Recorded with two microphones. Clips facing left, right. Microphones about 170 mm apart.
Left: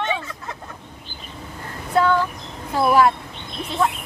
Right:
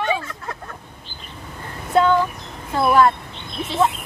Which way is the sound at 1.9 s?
25° right (ahead or behind).